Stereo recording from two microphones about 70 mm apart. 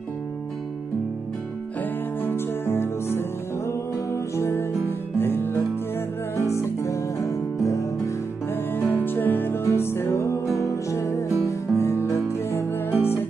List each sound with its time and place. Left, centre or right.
2.2 s music: left
8.7 s music: left